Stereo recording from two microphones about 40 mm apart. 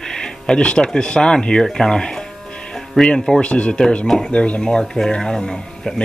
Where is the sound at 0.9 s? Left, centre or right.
Centre.